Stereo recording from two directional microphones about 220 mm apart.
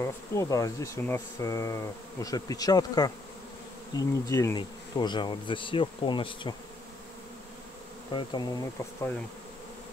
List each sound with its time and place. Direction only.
0.0 s speech: 15° left (ahead or behind)
3.9 s bee: 15° left (ahead or behind)
8.1 s bee: 20° left (ahead or behind)